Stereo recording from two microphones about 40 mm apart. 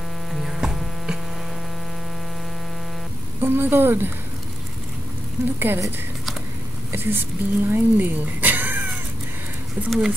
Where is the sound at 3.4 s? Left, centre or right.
Right.